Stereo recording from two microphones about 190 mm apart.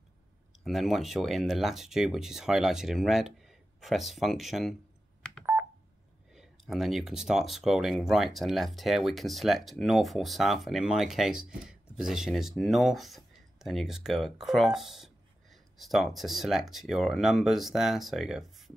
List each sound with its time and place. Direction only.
0.7 s speech: centre (ahead or behind)
5.4 s telephone dialing: 10° right (ahead or behind)
6.3 s speech: centre (ahead or behind)